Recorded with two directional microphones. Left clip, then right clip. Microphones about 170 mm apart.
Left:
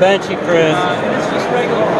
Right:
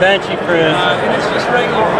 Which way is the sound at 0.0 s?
50° left (ahead or behind).